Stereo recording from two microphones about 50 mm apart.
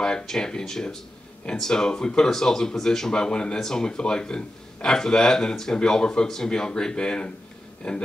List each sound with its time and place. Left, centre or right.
0.0 s speech: centre